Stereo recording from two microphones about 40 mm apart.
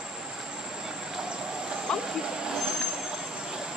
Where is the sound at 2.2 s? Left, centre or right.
Centre.